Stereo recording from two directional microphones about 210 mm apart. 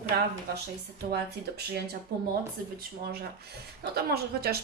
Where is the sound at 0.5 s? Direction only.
50° right (ahead or behind).